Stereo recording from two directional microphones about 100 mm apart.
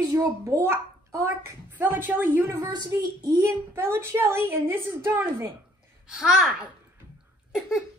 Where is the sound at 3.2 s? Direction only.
35° right (ahead or behind).